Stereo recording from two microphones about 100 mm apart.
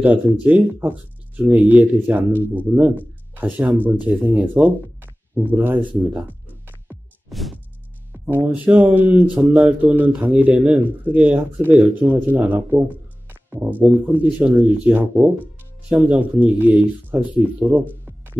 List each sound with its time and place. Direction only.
0.0 s speech: 15° right (ahead or behind)
3.3 s speech: 20° right (ahead or behind)
6.1 s music: 15° right (ahead or behind)
7.2 s music: centre (ahead or behind)
8.1 s speech: 15° right (ahead or behind)